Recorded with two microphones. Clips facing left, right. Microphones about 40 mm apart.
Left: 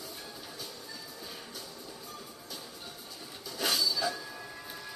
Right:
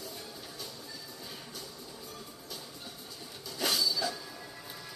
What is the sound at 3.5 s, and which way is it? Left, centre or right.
Train, centre.